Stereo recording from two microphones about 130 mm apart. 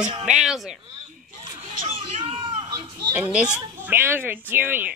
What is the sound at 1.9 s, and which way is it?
Children playing, 45° right (ahead or behind).